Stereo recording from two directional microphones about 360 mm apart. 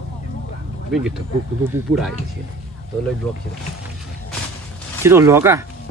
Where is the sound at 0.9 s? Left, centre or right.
Centre.